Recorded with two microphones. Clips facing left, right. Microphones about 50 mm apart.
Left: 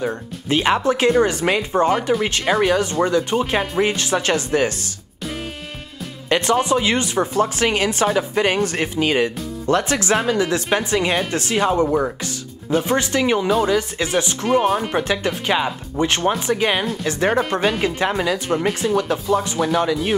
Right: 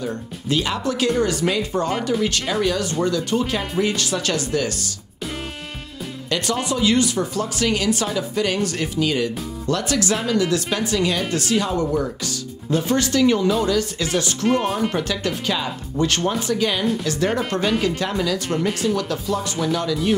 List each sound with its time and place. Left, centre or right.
0.0 s speech: left
6.2 s speech: left; by 15.0 s centre
15.0 s speech: left
17.3 s speech: centre
17.6 s speech: left